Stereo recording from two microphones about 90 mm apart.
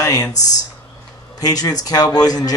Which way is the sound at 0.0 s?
40° left (ahead or behind).